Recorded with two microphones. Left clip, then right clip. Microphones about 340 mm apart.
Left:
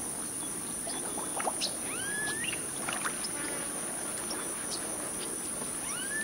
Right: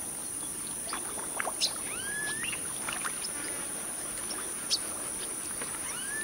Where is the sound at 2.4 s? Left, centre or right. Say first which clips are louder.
Left 1 dB; right.